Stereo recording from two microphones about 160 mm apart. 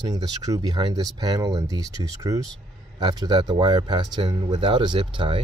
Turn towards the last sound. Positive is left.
turn(degrees=-30)  # may be behind; listen again after turning